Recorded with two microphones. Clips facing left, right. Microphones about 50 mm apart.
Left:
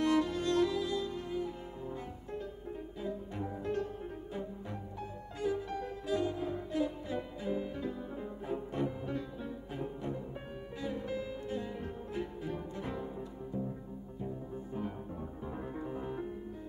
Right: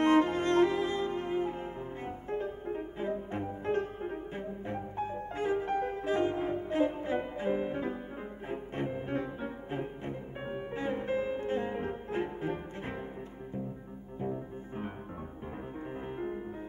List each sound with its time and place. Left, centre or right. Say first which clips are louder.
0.0 s music: right 5 dB; right
15.9 s music: right 5 dB; right